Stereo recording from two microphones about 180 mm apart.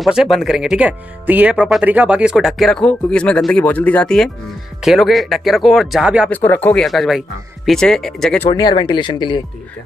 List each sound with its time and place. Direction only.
0.0 s speech: centre (ahead or behind)
6.3 s speech: 10° left (ahead or behind)
8.5 s speech: 25° left (ahead or behind)